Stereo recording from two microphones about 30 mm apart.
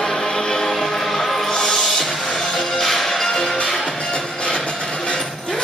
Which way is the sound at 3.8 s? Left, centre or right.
Left.